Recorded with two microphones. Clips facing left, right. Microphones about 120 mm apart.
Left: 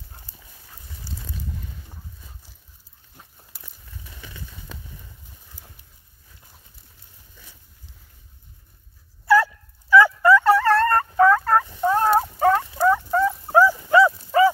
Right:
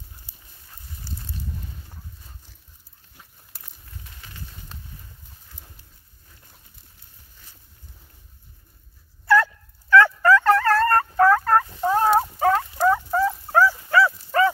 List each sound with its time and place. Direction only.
1.1 s boat: 15° left (ahead or behind)
9.2 s dog: 10° left (ahead or behind)
11.8 s turkey: centre (ahead or behind)
13.5 s dog: 20° left (ahead or behind)